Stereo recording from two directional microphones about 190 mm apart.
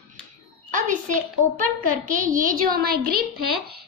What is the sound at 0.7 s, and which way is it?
A child's voice, 45° right (ahead or behind).